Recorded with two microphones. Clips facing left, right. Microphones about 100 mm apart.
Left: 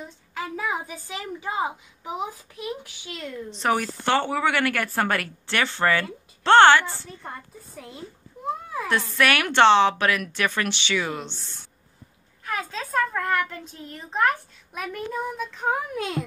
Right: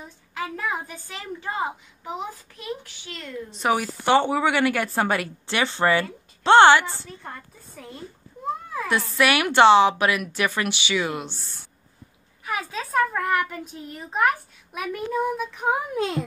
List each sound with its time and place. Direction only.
0.3 s a woman's voice: centre (ahead or behind)
3.5 s a child's voice: 10° right (ahead or behind)
7.1 s a woman's voice: centre (ahead or behind)
9.1 s a child's voice: 15° right (ahead or behind)
12.4 s a child's voice: 5° right (ahead or behind)
15.6 s a child's voice: 20° right (ahead or behind)
16.0 s a child's voice: 30° right (ahead or behind)